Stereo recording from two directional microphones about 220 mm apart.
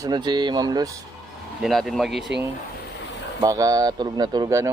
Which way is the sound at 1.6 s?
Centre (ahead or behind).